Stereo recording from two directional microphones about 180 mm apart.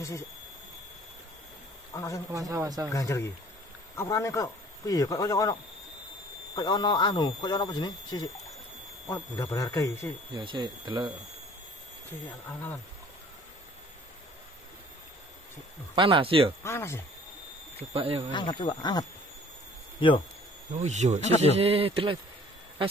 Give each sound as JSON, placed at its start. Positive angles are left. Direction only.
{"t": 1.9, "sound": "a man's voice", "side_deg": 20}
{"t": 2.3, "sound": "speech", "side_deg": -20}
{"t": 2.9, "sound": "speech", "side_deg": 20}
{"t": 10.3, "sound": "speech", "side_deg": -25}
{"t": 12.4, "sound": "speech", "side_deg": 10}
{"t": 15.9, "sound": "speech", "side_deg": -30}
{"t": 16.6, "sound": "speech", "side_deg": 15}
{"t": 17.7, "sound": "speech", "side_deg": -35}
{"t": 18.3, "sound": "speech", "side_deg": 25}
{"t": 20.7, "sound": "speech", "side_deg": -40}